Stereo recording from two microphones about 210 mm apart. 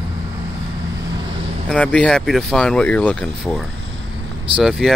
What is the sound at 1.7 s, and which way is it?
Speech, 5° left (ahead or behind).